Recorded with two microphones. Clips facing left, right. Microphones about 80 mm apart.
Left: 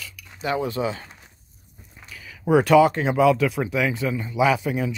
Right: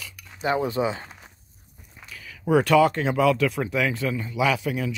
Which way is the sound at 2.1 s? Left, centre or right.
Centre.